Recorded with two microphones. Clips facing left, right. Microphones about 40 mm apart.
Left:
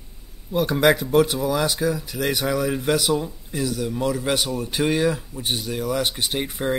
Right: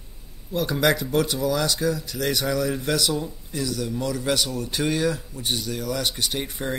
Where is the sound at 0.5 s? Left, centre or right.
Centre.